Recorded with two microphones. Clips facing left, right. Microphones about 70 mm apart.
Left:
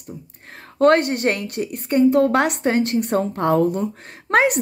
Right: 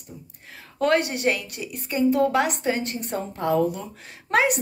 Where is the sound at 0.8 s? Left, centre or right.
Left.